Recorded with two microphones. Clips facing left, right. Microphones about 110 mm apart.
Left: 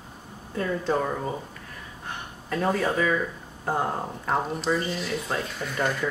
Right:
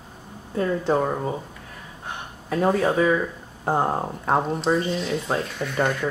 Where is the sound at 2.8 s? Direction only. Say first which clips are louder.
Right 4 dB; 25° right (ahead or behind).